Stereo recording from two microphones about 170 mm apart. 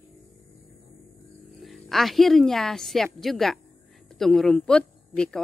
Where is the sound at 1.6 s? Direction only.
Centre (ahead or behind).